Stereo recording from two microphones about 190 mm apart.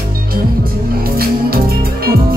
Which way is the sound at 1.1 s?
55° right (ahead or behind).